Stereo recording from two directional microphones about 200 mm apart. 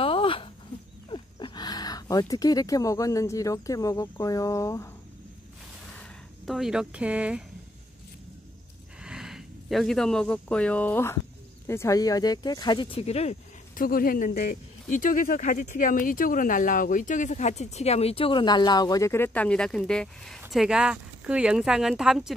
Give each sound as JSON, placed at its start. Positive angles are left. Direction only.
{"t": 0.0, "sound": "a sound", "side_deg": 25}
{"t": 1.1, "sound": "speech", "side_deg": 25}
{"t": 5.9, "sound": "speech", "side_deg": 0}
{"t": 9.0, "sound": "speech", "side_deg": -5}